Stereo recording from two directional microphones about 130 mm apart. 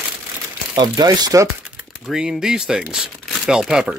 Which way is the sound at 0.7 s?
30° right (ahead or behind).